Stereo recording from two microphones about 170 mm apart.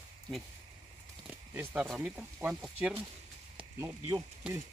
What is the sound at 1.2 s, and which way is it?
Speech, 5° right (ahead or behind).